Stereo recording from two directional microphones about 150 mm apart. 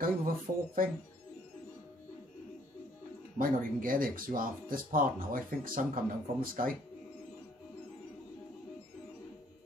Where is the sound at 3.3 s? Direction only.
70° right (ahead or behind).